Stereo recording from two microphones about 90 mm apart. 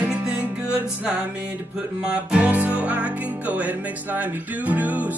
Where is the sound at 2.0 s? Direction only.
15° right (ahead or behind).